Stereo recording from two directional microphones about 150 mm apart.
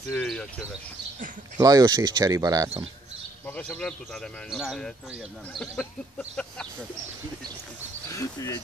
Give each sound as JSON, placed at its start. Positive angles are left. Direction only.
{"t": 0.1, "sound": "speech", "side_deg": 5}
{"t": 1.6, "sound": "speech", "side_deg": -25}
{"t": 3.4, "sound": "speech", "side_deg": 5}
{"t": 8.1, "sound": "speech", "side_deg": 20}